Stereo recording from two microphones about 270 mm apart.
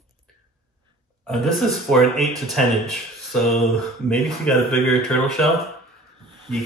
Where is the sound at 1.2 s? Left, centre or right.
Centre.